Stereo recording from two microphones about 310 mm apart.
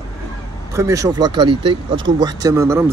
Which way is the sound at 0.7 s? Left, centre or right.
Centre.